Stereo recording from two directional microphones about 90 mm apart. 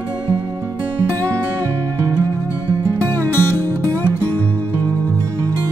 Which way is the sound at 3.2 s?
20° left (ahead or behind).